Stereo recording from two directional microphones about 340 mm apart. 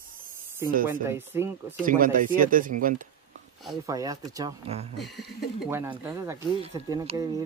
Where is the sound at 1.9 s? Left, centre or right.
Right.